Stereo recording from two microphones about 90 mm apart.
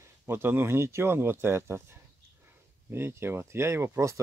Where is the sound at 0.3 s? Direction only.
25° right (ahead or behind).